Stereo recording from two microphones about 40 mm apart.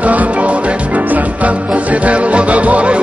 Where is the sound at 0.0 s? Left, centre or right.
Right.